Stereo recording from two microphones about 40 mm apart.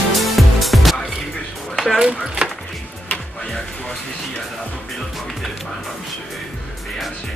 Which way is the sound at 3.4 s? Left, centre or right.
Centre.